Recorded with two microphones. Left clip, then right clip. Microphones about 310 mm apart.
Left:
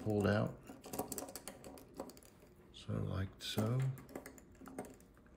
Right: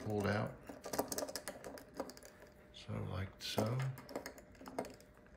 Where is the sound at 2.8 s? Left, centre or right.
Centre.